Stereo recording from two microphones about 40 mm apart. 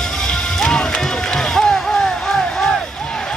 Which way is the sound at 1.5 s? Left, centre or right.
Centre.